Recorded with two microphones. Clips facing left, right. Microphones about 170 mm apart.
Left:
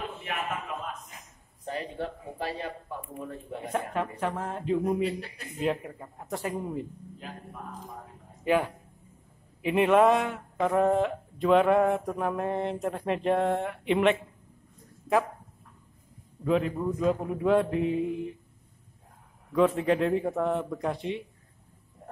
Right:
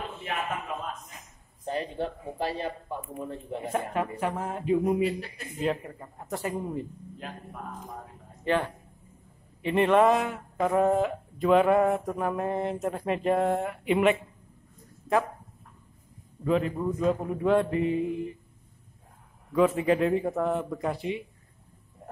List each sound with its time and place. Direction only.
1.7 s a sound: 25° right (ahead or behind)
3.3 s speech: 25° right (ahead or behind)
3.7 s speech: 5° right (ahead or behind)
8.5 s speech: 10° left (ahead or behind)
16.4 s speech: centre (ahead or behind)
19.5 s speech: 5° right (ahead or behind)